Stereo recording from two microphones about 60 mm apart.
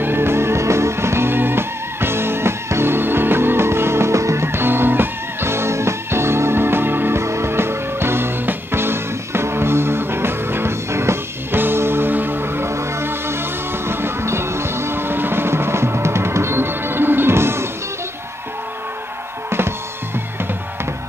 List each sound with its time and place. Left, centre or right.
0.0 s music: right